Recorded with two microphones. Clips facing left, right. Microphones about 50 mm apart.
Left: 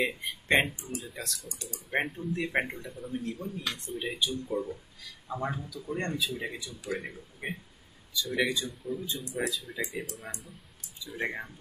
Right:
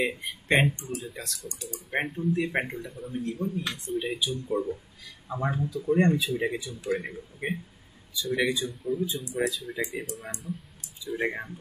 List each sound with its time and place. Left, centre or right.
0.0 s speech: centre; by 6.9 s right
6.9 s speech: centre
8.3 s speech: centre